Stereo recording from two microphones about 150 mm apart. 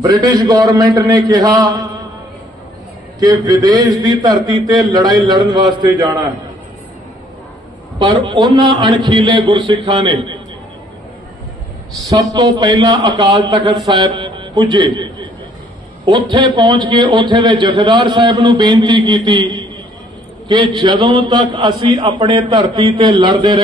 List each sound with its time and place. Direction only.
0.0 s a man's voice: 25° right (ahead or behind)
3.2 s a man's voice: 25° right (ahead or behind)
8.2 s a man's voice: 30° right (ahead or behind)
12.1 s a man's voice: 25° right (ahead or behind)
16.1 s a man's voice: 30° right (ahead or behind)